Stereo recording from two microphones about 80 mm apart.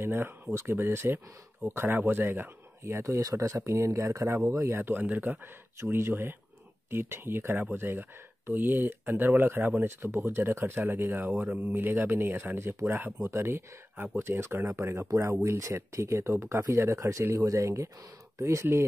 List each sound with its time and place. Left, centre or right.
0.0 s speech: right